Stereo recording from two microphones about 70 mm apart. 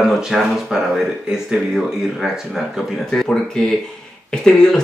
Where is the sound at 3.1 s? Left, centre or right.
Centre.